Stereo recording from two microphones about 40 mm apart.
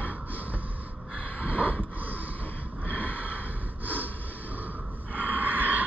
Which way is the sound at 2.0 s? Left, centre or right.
Right.